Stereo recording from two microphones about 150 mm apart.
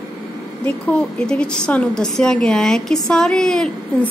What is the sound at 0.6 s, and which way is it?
A woman's voice, 10° left (ahead or behind).